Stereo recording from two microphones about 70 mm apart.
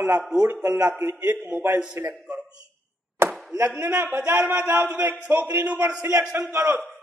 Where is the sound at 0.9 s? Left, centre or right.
Right.